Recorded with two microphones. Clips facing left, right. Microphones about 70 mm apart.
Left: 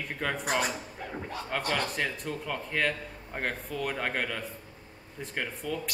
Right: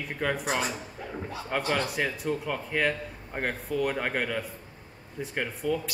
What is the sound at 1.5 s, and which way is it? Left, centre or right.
Speech, centre.